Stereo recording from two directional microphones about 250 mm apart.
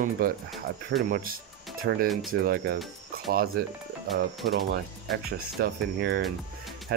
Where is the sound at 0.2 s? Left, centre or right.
Right.